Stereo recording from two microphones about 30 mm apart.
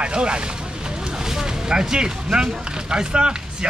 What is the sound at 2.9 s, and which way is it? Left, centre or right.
Speech, right.